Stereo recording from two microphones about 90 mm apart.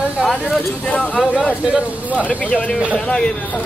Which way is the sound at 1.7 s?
15° right (ahead or behind).